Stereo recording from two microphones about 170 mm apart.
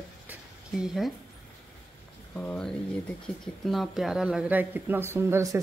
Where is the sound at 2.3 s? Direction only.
5° left (ahead or behind).